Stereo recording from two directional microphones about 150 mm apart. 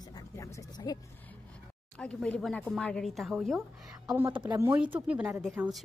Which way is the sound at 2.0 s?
5° left (ahead or behind).